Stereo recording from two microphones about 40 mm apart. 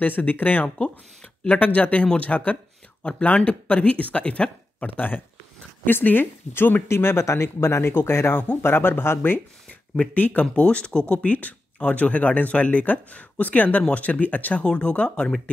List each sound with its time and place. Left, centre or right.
0.0 s speech: left
0.7 s speech: left
1.6 s speech: left
4.8 s speech: left
6.5 s speech: left
8.6 s speech: left
10.1 s speech: left
10.4 s speech: left
11.2 s speech: left
14.6 s speech: left